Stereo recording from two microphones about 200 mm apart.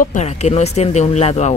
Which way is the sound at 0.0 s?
35° left (ahead or behind).